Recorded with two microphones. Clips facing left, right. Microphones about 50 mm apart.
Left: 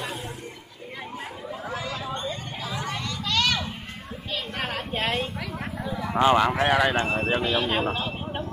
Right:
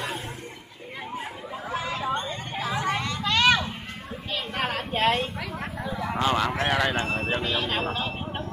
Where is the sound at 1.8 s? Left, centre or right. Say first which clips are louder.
Right 7 dB; right.